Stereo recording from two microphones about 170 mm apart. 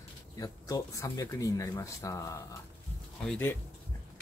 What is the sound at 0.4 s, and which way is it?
Speech, 20° left (ahead or behind).